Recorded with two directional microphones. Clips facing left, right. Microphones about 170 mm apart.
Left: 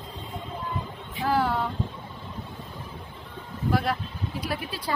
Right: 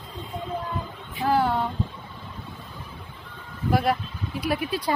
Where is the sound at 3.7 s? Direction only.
10° right (ahead or behind).